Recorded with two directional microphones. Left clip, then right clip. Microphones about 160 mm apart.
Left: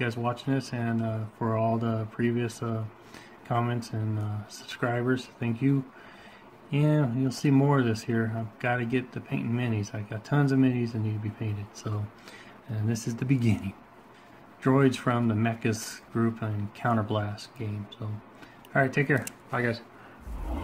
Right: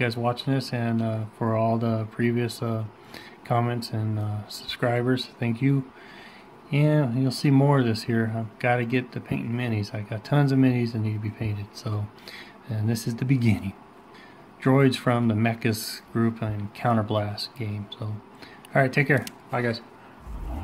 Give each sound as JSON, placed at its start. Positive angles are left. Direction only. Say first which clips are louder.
{"t": 0.0, "sound": "speech", "louder": "right 4 dB", "side_deg": -20}